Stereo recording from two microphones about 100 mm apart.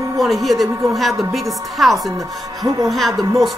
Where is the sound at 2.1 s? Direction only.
35° right (ahead or behind).